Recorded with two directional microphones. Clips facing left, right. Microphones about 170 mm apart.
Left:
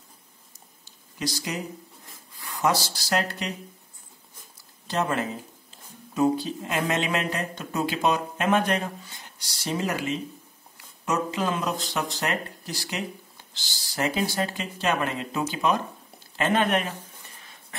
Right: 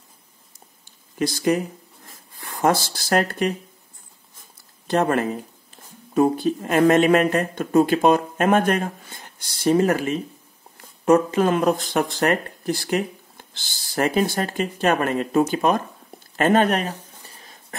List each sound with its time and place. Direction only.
1.1 s speech: 55° right (ahead or behind)
4.8 s speech: 55° right (ahead or behind)
16.3 s a sound: 45° right (ahead or behind)